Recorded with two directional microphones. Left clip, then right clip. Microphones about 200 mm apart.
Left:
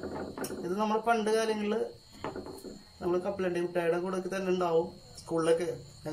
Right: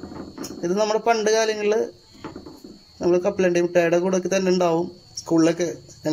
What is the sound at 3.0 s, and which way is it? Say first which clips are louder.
A man's voice: right 12 dB; 45° right (ahead or behind).